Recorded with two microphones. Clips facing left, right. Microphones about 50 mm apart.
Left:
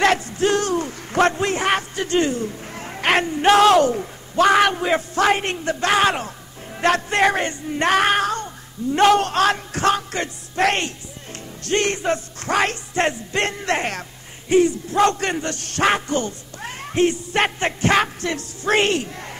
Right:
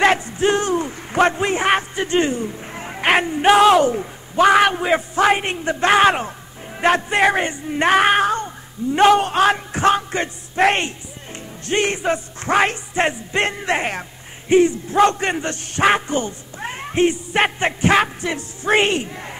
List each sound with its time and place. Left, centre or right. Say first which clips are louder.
0.0 s a man's voice: right 2 dB; centre